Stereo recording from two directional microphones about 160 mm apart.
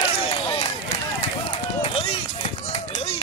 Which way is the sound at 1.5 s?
40° left (ahead or behind).